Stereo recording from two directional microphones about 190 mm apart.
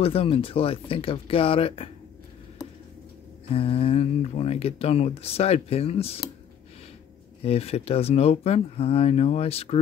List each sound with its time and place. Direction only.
0.0 s speech: 30° left (ahead or behind)
3.4 s speech: 30° left (ahead or behind)
7.4 s speech: 30° left (ahead or behind)